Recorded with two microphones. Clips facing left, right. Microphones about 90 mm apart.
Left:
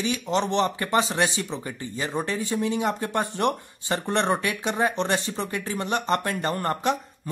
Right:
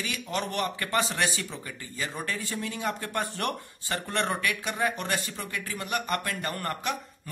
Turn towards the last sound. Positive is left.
turn(degrees=30)  # may be behind; listen again after turning